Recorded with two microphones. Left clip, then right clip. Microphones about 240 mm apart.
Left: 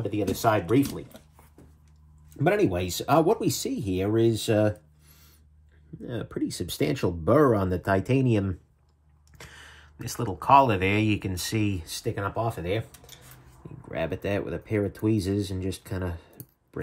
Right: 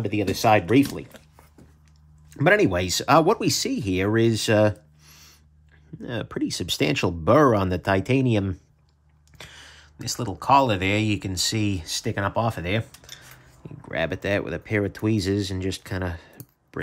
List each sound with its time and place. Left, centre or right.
0.0 s speech: centre
2.3 s speech: centre
12.9 s cutlery: centre
13.8 s speech: centre